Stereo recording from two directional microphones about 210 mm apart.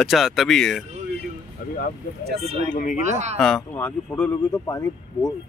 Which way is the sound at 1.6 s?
40° left (ahead or behind).